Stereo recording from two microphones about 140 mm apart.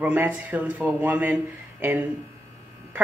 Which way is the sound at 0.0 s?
10° right (ahead or behind).